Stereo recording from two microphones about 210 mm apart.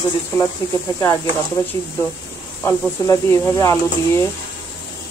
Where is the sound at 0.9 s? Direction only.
20° left (ahead or behind).